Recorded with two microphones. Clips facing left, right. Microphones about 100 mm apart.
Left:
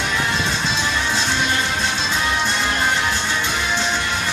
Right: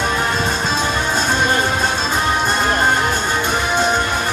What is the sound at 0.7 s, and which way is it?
Music, 45° right (ahead or behind).